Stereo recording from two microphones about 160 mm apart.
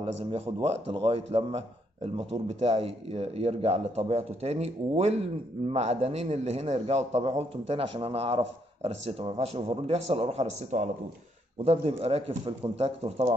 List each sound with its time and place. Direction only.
0.0 s a man's voice: 35° right (ahead or behind)
2.6 s a man's voice: 40° right (ahead or behind)